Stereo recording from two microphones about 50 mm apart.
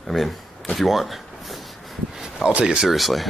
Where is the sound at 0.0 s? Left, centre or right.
Centre.